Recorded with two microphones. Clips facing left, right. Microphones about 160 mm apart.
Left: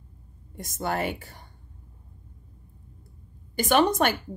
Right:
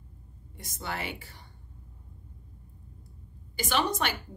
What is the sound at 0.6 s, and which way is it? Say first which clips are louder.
Speech: left 8 dB; 45° left (ahead or behind).